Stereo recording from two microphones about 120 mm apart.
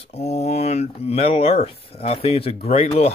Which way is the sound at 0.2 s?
65° left (ahead or behind).